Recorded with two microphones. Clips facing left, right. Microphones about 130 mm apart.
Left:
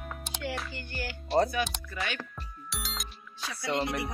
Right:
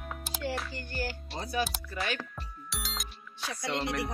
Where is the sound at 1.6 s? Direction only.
5° right (ahead or behind).